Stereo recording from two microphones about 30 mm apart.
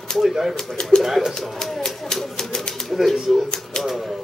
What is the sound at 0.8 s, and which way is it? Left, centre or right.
Speech, left.